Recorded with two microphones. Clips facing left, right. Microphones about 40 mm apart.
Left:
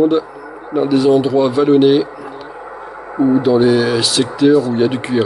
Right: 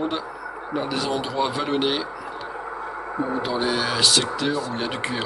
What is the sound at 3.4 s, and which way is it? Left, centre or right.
Speech, centre.